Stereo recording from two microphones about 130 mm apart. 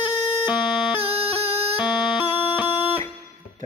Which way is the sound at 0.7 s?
Centre (ahead or behind).